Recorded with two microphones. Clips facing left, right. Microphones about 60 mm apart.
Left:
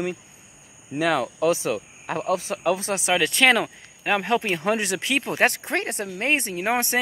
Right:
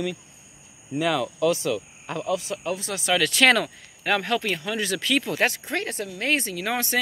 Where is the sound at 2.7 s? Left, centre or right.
Left.